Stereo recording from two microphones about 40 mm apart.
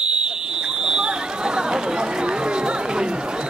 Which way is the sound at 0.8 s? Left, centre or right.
Centre.